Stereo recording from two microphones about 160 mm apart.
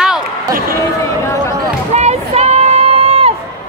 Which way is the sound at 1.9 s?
45° right (ahead or behind).